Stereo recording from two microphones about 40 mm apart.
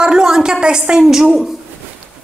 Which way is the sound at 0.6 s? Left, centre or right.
Right.